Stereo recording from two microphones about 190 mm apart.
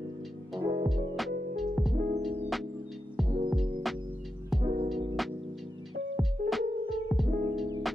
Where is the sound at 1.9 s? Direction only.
45° right (ahead or behind).